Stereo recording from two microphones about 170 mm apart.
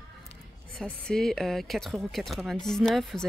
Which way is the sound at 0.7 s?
5° left (ahead or behind).